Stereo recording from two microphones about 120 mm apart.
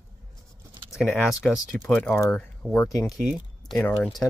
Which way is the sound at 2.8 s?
25° left (ahead or behind).